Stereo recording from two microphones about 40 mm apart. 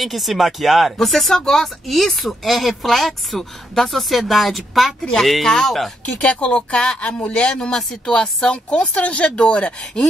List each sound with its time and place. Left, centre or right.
0.0 s speech: centre
6.0 s speech: left